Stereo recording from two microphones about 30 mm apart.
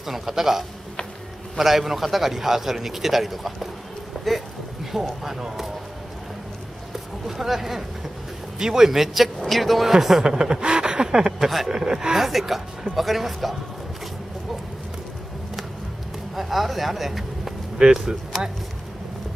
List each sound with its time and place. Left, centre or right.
0.0 s a man's voice: centre
5.2 s a man's voice: centre
7.2 s a man's voice: centre
8.5 s a man's voice: centre
9.4 s speech: centre
9.9 s a man's voice: centre
10.6 s a sound: right
11.7 s speech: right
12.2 s speech: centre
16.3 s speech: centre
17.8 s speech: right